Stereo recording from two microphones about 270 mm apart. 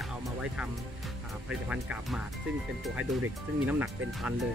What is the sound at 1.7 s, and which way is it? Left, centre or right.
Speech, centre.